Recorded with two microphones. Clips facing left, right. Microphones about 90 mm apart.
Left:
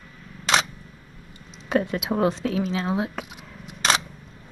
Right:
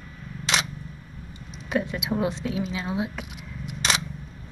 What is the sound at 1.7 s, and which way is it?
Speech, 40° left (ahead or behind).